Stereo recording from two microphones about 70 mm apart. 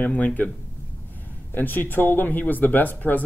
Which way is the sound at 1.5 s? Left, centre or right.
Left.